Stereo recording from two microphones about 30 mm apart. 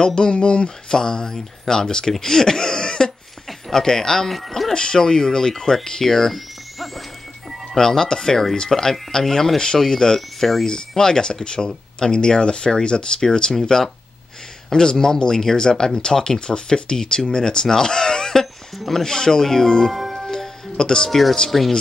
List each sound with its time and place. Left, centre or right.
0.0 s speech: left
0.8 s speech: left
2.2 s a sound: centre
3.7 s speech: centre
7.7 s speech: centre
14.7 s speech: left
19.9 s music: centre
20.2 s music: left
21.1 s speech: centre